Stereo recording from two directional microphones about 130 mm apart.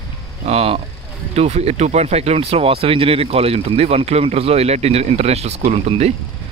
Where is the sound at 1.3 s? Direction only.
55° right (ahead or behind).